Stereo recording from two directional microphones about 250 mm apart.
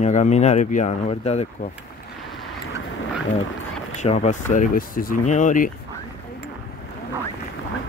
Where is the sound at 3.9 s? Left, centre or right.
Left.